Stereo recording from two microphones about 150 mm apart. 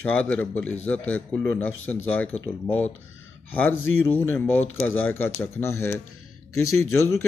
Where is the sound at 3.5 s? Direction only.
10° left (ahead or behind).